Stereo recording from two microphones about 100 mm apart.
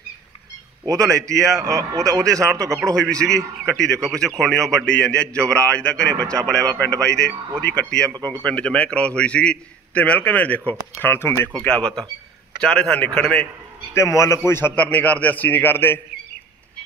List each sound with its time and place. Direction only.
0.8 s a man's voice: 35° right (ahead or behind)
3.2 s a man's voice: 5° left (ahead or behind)
8.1 s a man's voice: 40° right (ahead or behind)
8.5 s a man's voice: 10° left (ahead or behind)
11.6 s a man's voice: 10° left (ahead or behind)
13.9 s a man's voice: 30° left (ahead or behind)